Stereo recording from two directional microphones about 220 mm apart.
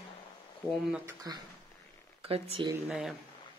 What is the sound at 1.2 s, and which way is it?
A woman's voice, 15° right (ahead or behind).